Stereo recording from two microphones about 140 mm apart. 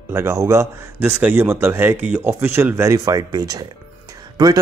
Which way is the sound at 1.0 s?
10° right (ahead or behind).